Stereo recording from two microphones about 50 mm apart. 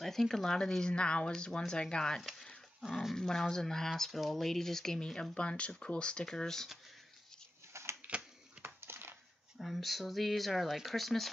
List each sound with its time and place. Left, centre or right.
0.0 s speech: centre
2.8 s speech: centre
3.2 s speech: centre
7.7 s a sound: right
8.6 s a sound: right
9.6 s speech: centre